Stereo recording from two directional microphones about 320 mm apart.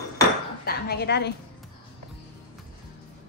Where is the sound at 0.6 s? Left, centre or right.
Left.